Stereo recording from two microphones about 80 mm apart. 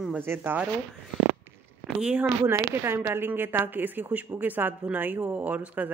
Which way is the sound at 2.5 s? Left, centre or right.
Right.